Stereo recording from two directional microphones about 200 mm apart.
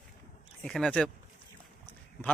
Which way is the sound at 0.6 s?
Centre (ahead or behind).